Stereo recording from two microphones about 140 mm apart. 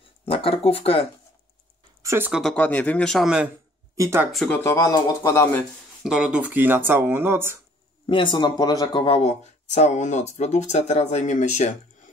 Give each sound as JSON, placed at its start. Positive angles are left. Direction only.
{"t": 0.2, "sound": "speech", "side_deg": 40}
{"t": 2.0, "sound": "speech", "side_deg": -15}
{"t": 2.5, "sound": "speech", "side_deg": 10}
{"t": 3.9, "sound": "speech", "side_deg": -20}
{"t": 4.5, "sound": "speech", "side_deg": 20}
{"t": 6.0, "sound": "speech", "side_deg": -5}
{"t": 8.1, "sound": "speech", "side_deg": 35}